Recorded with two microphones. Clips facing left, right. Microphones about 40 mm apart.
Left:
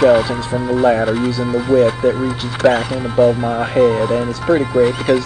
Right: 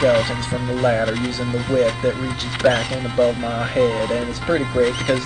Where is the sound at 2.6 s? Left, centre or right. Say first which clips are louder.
Left 4 dB; centre.